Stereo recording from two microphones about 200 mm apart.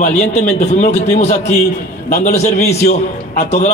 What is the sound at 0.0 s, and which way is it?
A man's voice, 35° left (ahead or behind).